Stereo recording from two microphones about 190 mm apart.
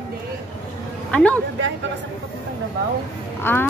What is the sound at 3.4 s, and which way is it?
Speech, 10° left (ahead or behind).